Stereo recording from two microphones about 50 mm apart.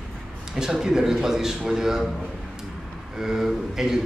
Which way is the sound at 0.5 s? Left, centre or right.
Centre.